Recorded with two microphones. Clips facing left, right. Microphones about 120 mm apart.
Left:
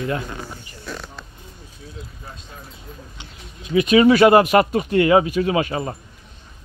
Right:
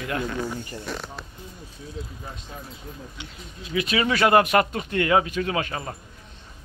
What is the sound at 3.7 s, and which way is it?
Speech, 25° left (ahead or behind).